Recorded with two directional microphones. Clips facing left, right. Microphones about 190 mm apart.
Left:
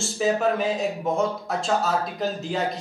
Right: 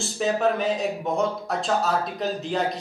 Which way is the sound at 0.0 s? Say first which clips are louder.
Even; centre (ahead or behind).